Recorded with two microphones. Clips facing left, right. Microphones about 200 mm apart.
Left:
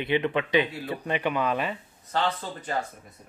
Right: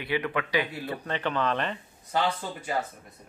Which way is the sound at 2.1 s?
10° right (ahead or behind).